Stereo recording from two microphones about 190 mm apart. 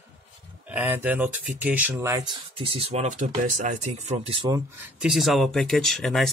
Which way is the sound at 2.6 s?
30° right (ahead or behind).